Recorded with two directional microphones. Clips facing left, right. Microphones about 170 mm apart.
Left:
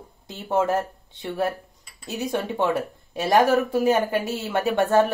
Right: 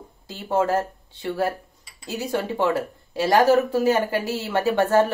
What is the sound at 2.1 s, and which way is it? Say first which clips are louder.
A woman's voice: right 1 dB; 20° left (ahead or behind).